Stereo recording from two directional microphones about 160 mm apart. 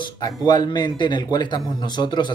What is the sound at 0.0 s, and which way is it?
Speech, 25° left (ahead or behind).